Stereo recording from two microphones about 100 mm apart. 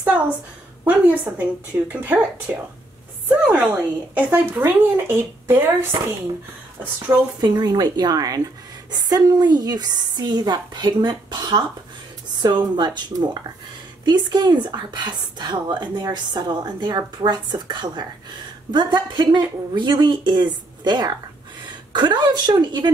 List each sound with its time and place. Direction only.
0.8 s speech: 10° right (ahead or behind)
7.3 s a woman's voice: 40° right (ahead or behind)